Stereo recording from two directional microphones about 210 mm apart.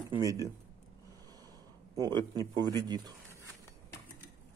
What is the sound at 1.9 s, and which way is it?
Speech, 15° right (ahead or behind).